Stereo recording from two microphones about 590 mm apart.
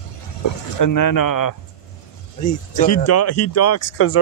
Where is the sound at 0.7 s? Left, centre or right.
Left.